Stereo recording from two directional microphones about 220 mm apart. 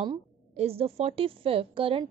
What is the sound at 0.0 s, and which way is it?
A woman's voice, 25° right (ahead or behind).